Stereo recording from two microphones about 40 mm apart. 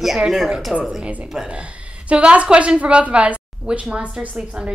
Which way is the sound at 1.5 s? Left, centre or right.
Right.